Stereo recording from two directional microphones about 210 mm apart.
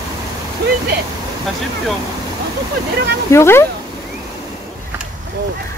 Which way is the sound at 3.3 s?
10° left (ahead or behind).